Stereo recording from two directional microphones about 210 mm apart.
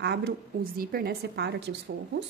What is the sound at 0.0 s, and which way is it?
A woman's voice, 50° right (ahead or behind).